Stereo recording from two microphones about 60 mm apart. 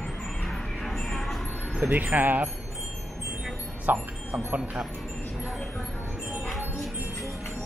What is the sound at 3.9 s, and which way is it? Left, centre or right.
Speech, right.